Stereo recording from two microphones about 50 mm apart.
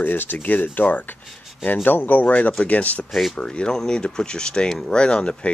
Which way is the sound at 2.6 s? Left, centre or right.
Left.